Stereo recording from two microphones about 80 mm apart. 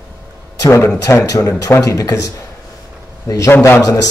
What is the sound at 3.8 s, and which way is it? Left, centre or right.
Speech, left.